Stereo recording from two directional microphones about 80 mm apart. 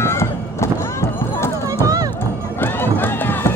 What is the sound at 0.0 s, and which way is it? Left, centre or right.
Clip-clop, left.